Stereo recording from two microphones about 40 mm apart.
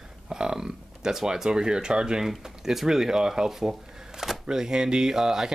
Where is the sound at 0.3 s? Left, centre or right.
Centre.